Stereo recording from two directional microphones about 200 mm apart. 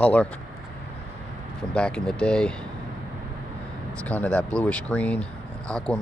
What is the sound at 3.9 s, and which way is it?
Speech, 5° left (ahead or behind).